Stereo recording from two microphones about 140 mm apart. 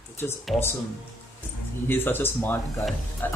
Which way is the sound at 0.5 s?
20° left (ahead or behind).